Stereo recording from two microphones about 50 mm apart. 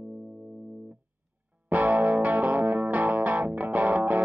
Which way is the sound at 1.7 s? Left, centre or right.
Right.